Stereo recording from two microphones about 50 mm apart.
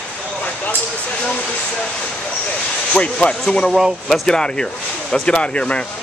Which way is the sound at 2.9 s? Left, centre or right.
Left.